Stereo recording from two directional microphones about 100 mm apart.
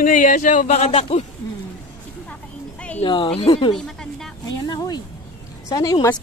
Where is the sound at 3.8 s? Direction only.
5° left (ahead or behind).